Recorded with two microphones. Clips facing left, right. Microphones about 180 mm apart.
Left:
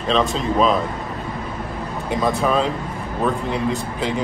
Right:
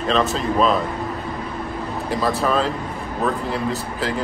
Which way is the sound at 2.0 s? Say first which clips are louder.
Left 1 dB; centre (ahead or behind).